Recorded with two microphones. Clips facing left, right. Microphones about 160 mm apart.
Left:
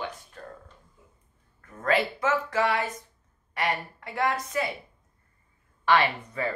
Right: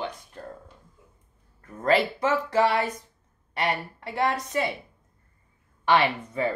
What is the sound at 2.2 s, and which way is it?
Speech, 35° right (ahead or behind).